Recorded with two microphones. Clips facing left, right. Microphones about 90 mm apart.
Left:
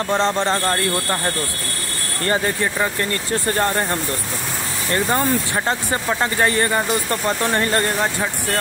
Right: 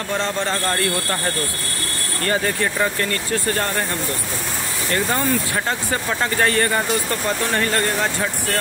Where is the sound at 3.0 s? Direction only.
25° left (ahead or behind).